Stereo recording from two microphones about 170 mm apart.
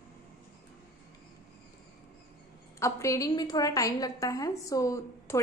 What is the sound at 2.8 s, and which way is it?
A woman's voice, 20° left (ahead or behind).